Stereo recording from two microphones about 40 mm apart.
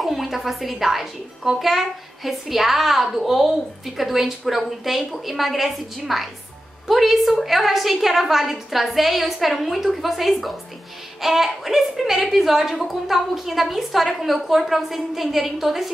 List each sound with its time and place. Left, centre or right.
0.0 s a woman's voice: centre